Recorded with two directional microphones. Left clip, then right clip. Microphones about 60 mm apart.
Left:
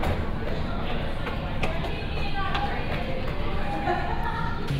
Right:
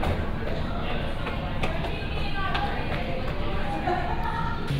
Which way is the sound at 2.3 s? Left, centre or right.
Left.